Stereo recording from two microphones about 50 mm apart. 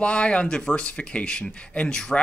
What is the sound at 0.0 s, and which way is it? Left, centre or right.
Speech, left.